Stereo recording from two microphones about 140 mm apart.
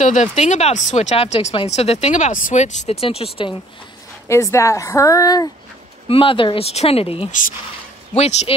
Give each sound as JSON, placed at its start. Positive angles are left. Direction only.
{"t": 0.0, "sound": "speech", "side_deg": 60}
{"t": 4.3, "sound": "a woman's voice", "side_deg": 20}
{"t": 6.0, "sound": "speech", "side_deg": 40}
{"t": 7.2, "sound": "speech", "side_deg": 70}
{"t": 8.2, "sound": "speech", "side_deg": 50}